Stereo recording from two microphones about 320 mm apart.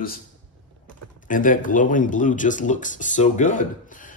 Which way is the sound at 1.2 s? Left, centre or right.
Left.